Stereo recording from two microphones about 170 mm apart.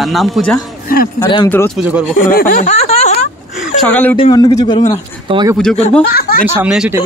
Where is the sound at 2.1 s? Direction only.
55° left (ahead or behind); by 3.2 s 35° left (ahead or behind).